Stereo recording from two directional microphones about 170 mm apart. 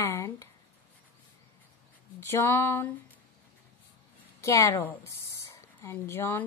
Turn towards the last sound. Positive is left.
turn(degrees=15)  # may be behind; listen again after turning